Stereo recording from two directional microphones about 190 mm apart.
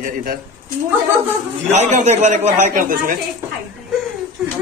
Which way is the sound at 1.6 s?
35° right (ahead or behind).